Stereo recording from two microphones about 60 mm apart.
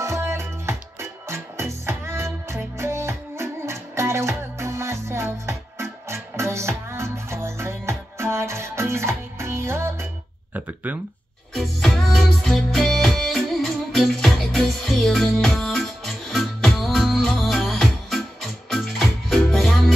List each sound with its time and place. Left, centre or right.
0.0 s music: right
10.5 s a sound: right
11.5 s music: centre